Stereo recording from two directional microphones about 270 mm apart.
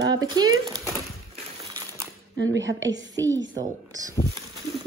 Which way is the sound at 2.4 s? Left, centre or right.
Right.